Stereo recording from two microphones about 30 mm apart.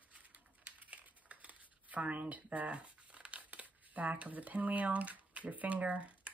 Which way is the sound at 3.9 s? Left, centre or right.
Right.